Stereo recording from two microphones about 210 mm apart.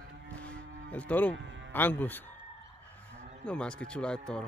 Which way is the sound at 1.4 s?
60° right (ahead or behind).